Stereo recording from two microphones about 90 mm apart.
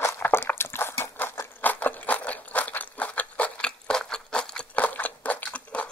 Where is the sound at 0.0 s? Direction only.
25° left (ahead or behind).